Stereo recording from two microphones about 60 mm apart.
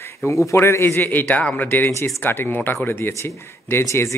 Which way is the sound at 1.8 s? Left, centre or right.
Left.